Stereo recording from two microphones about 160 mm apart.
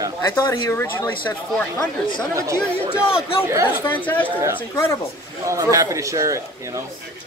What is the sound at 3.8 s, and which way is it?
Speech, 10° left (ahead or behind).